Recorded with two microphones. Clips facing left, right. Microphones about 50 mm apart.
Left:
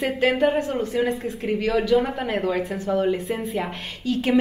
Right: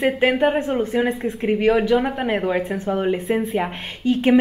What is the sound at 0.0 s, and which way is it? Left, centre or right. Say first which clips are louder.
A woman's voice: right 3 dB; right.